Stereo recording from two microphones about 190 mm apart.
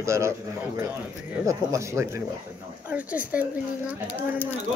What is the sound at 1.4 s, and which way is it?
Speech, 15° right (ahead or behind).